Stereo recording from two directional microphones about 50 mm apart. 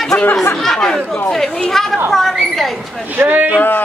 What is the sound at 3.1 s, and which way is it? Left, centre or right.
Speech, right.